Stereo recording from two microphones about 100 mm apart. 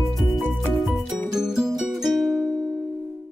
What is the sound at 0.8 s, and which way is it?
Music, centre (ahead or behind).